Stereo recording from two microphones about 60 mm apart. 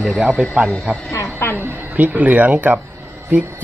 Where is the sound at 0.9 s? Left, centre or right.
Right.